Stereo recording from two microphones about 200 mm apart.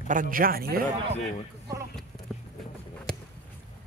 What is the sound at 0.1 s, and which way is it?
Speech, 45° right (ahead or behind).